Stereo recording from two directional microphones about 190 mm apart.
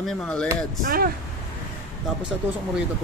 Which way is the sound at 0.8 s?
50° right (ahead or behind).